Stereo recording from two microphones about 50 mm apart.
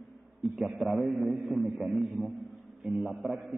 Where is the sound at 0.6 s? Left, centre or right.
Right.